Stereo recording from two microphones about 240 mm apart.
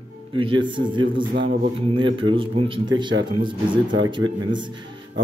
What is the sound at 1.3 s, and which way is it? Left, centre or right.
Speech, right.